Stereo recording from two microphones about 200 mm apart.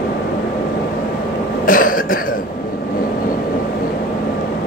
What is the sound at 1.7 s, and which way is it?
Cough, 45° left (ahead or behind).